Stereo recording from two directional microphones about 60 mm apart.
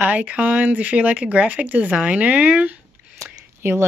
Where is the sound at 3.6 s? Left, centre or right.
Right.